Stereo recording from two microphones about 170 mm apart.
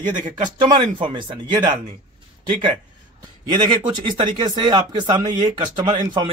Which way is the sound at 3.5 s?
25° right (ahead or behind).